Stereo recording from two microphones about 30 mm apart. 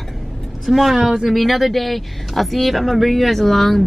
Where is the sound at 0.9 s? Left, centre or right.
Centre.